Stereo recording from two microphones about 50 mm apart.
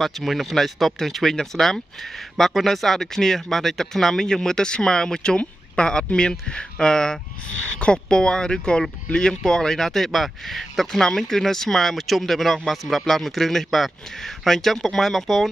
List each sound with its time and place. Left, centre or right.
0.0 s speech: centre